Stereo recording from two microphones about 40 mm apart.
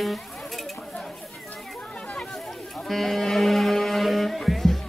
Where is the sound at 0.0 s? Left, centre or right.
Centre.